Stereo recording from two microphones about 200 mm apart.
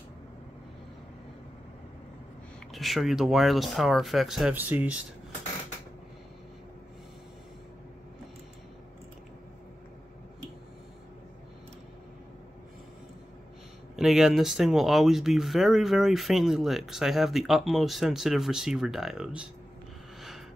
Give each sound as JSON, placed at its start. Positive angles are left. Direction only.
{"t": 2.7, "sound": "speech", "side_deg": 0}
{"t": 13.9, "sound": "speech", "side_deg": 0}
{"t": 20.2, "sound": "gasp", "side_deg": 0}